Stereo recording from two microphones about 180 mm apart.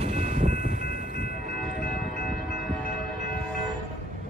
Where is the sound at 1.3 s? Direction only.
55° left (ahead or behind).